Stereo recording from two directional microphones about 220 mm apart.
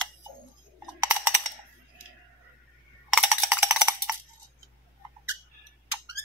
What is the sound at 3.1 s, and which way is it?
Cowbell, 5° right (ahead or behind).